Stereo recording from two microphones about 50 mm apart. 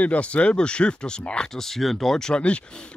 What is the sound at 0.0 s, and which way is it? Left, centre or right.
Speech, left.